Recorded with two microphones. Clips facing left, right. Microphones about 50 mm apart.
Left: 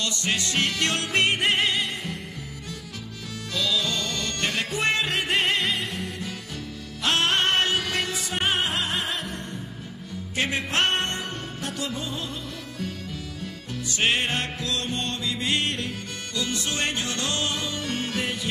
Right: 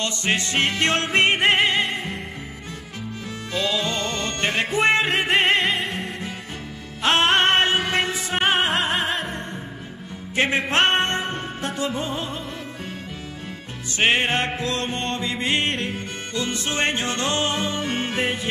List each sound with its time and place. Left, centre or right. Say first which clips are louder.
0.0 s music: right 4 dB; right
3.5 s music: right 3 dB; right
10.3 s music: right 5 dB; right
13.9 s music: right 5 dB; right